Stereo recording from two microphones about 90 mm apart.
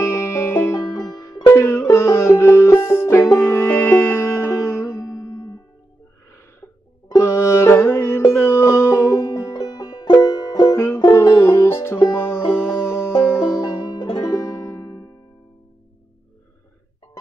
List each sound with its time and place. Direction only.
0.0 s music: 30° left (ahead or behind)
1.4 s music: 25° left (ahead or behind)
7.2 s music: 30° left (ahead or behind)
13.3 s music: 40° left (ahead or behind)